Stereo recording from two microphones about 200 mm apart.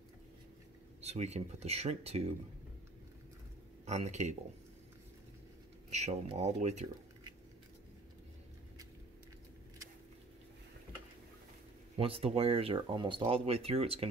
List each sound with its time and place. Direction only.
1.0 s speech: 35° right (ahead or behind)
3.8 s speech: 35° right (ahead or behind)
5.9 s speech: 35° right (ahead or behind)
12.0 s speech: 30° right (ahead or behind)